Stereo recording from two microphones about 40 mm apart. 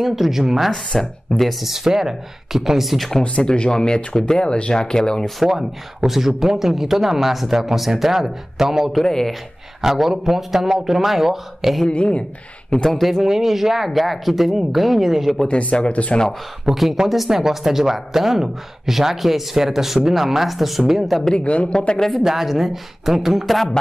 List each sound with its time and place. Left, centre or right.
0.0 s speech: centre
0.9 s a man's voice: centre
3.3 s speech: left
5.4 s speech: centre
8.9 s a man's voice: centre
9.8 s speech: centre
11.9 s speech: left
12.9 s speech: centre
15.4 s speech: left
16.6 s speech: centre
21.5 s speech: left
21.7 s a man's voice: centre
22.2 s speech: centre